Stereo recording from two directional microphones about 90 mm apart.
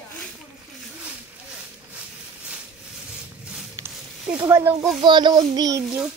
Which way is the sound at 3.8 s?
30° right (ahead or behind).